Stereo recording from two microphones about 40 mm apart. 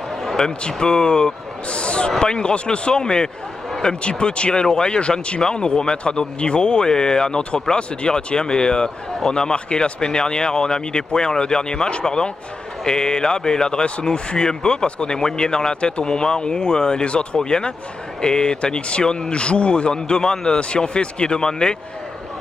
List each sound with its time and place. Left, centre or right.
0.4 s speech: centre